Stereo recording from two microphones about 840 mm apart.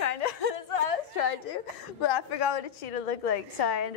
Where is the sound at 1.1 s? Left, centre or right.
Left.